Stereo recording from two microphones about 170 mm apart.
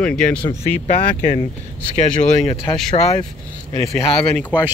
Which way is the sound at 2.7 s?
15° left (ahead or behind).